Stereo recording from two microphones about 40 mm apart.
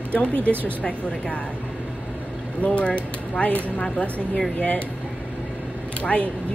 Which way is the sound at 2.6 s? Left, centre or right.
Left.